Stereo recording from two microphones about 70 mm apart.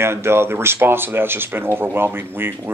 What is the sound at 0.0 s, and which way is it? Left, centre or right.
Speech, right.